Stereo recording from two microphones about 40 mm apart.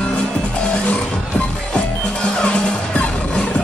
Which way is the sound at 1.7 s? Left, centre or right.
Left.